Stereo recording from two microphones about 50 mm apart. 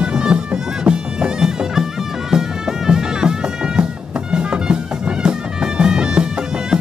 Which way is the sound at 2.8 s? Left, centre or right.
Centre.